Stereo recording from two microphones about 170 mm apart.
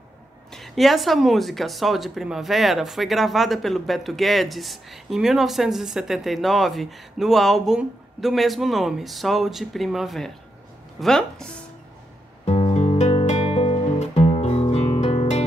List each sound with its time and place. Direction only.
0.5 s speech: centre (ahead or behind)
12.4 s music: 35° left (ahead or behind)